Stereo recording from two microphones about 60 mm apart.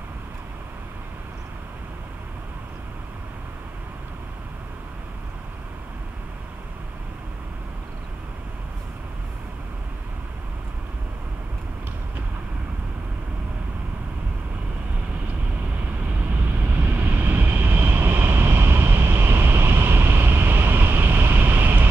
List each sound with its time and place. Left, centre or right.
16.4 s vehicle: right